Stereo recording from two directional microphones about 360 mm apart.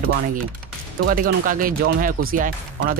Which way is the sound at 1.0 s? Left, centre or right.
Right.